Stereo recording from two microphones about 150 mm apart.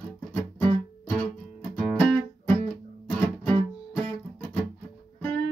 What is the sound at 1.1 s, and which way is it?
Music, 5° left (ahead or behind).